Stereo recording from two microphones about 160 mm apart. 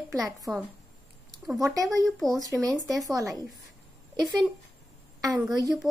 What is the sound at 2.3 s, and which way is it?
Speech, 20° right (ahead or behind).